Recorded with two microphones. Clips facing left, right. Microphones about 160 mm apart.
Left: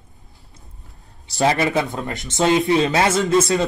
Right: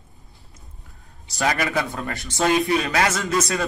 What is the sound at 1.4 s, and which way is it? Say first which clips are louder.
Speech: left 5 dB; 25° left (ahead or behind).